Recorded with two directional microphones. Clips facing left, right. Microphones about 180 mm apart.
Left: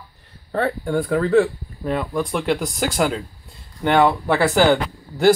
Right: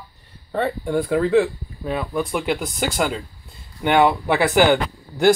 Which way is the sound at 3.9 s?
15° right (ahead or behind).